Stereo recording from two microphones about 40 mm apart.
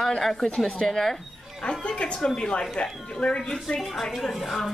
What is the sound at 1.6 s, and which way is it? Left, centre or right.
Speech, left.